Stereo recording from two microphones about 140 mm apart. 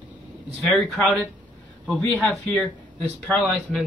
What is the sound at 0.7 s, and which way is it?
Speech, centre (ahead or behind).